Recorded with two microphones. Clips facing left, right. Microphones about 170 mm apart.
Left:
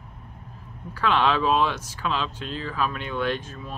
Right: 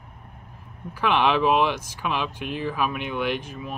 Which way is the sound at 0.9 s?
15° right (ahead or behind).